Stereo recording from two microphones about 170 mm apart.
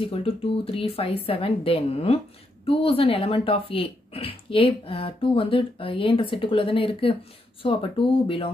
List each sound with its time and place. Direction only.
0.0 s speech: 35° left (ahead or behind)